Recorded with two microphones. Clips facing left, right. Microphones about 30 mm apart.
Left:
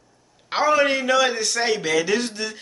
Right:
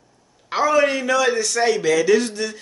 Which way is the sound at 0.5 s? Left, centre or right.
Left.